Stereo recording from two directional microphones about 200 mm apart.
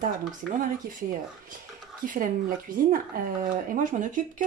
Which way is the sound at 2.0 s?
40° right (ahead or behind).